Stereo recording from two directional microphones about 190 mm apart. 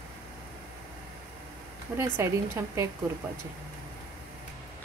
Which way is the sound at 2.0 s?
15° right (ahead or behind).